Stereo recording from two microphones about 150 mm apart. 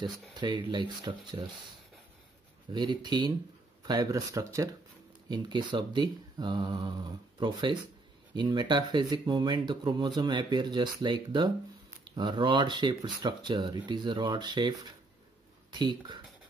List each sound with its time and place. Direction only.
0.0 s speech: 30° right (ahead or behind)
2.7 s speech: 30° right (ahead or behind)